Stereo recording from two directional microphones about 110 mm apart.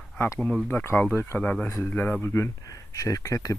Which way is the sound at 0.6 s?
15° left (ahead or behind).